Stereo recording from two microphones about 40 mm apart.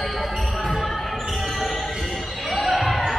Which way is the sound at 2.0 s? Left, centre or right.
Centre.